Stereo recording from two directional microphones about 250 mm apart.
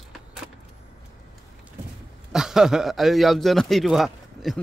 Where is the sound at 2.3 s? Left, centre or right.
Centre.